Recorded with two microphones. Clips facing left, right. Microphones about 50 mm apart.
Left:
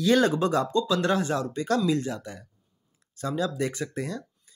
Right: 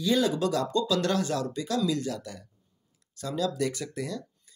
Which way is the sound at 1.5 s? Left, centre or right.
Left.